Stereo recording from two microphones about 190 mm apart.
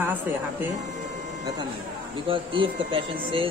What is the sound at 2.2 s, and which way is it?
Speech, 25° right (ahead or behind).